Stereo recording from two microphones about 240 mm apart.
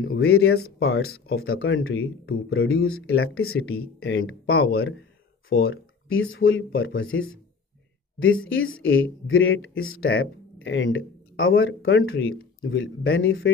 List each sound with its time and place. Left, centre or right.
0.2 s speech: left
0.6 s speech: left
3.5 s speech: left
4.6 s speech: left
5.6 s speech: left